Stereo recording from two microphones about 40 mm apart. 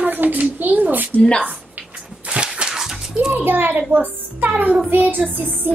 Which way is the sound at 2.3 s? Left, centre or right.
Right.